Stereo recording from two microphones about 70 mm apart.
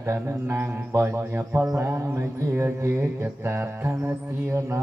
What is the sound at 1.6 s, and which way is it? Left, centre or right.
Mantra, right.